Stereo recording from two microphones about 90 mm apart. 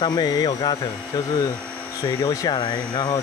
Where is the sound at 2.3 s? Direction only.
40° left (ahead or behind).